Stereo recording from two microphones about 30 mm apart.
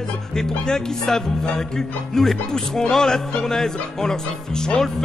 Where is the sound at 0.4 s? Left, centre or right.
Centre.